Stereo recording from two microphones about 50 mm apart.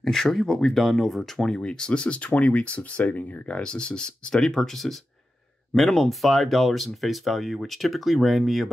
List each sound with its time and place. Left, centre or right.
0.0 s speech: centre
1.5 s speech: centre